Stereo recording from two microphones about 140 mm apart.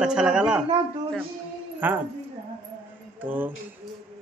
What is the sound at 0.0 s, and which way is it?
Speech, 5° right (ahead or behind).